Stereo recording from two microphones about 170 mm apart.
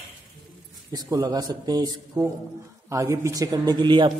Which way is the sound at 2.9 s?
15° right (ahead or behind).